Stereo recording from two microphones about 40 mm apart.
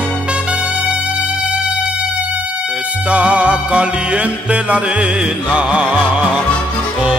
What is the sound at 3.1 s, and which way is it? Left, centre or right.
Music, right.